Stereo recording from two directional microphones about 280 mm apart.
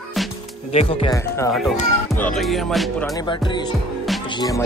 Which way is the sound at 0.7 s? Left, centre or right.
Centre.